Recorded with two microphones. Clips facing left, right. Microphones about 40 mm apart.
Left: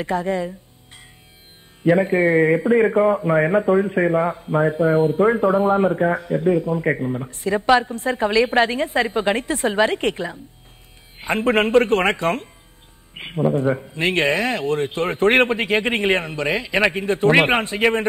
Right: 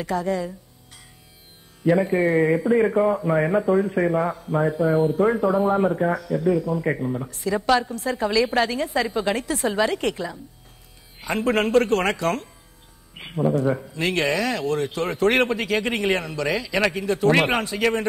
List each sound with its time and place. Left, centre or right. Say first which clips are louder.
0.0 s a man's voice: left 2 dB; left
1.8 s a man's voice: left 3 dB; left
7.2 s a man's voice: left 4 dB; left